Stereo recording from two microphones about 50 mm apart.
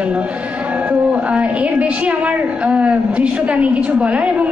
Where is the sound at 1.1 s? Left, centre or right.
Right.